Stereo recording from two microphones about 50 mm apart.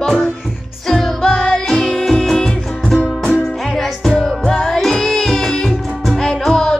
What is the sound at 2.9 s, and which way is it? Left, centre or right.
Music, centre.